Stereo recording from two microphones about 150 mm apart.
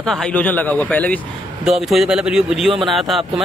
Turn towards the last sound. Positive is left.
turn(degrees=0)  # may be behind; listen again after turning